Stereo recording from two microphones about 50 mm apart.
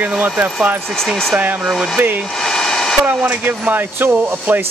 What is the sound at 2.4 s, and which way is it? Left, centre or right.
Hair dryer, centre.